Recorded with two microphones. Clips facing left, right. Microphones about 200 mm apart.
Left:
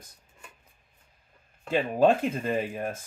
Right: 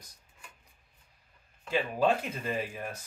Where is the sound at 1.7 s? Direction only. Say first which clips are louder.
Left 5 dB; 50° left (ahead or behind).